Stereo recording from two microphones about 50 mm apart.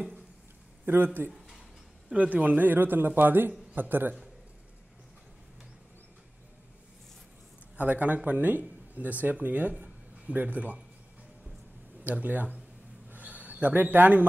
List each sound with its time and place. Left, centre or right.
0.8 s a man's voice: right
2.1 s a man's voice: right
7.7 s speech: right
12.0 s speech: right
13.1 s a sound: right